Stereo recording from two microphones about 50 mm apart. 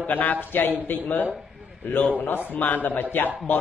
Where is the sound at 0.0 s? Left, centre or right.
Left.